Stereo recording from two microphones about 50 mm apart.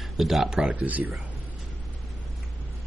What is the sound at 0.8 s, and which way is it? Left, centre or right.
Speech, right.